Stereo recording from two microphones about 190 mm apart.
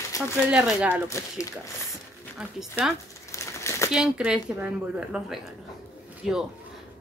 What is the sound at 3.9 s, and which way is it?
Speech, 5° right (ahead or behind).